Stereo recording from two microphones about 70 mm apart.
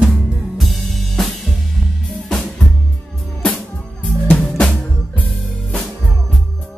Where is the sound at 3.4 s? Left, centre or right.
Centre.